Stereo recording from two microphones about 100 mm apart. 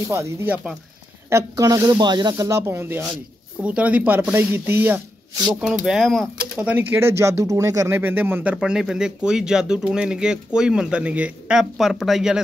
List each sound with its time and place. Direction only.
0.1 s speech: 25° right (ahead or behind); by 2.3 s 45° right (ahead or behind)
2.3 s speech: 30° right (ahead or behind)
5.6 s speech: 5° right (ahead or behind)
6.0 s speech: 5° left (ahead or behind)
6.6 s speech: 15° right (ahead or behind); by 7.9 s 35° right (ahead or behind)
7.9 s speech: 20° right (ahead or behind)
8.5 s speech: 5° right (ahead or behind)